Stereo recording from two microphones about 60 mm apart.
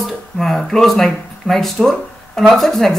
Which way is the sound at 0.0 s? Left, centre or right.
Centre.